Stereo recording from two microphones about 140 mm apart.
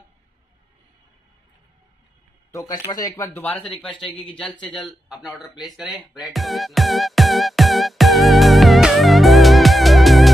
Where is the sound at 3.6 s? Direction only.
Centre (ahead or behind).